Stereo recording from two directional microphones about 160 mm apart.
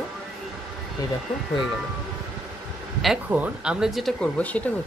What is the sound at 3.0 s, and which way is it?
Speech, 5° right (ahead or behind).